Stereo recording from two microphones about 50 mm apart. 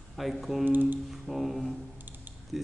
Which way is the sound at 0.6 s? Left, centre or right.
Right.